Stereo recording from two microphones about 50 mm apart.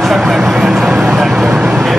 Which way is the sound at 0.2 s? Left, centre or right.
Centre.